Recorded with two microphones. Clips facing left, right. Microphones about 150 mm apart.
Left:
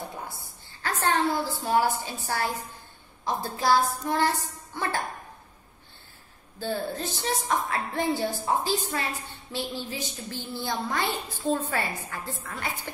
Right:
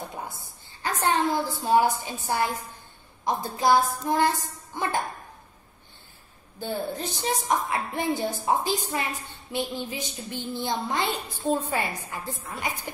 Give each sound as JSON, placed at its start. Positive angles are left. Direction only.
{"t": 0.7, "sound": "a sound", "side_deg": -15}
{"t": 1.6, "sound": "a woman's voice", "side_deg": -15}
{"t": 6.6, "sound": "a woman's voice", "side_deg": -15}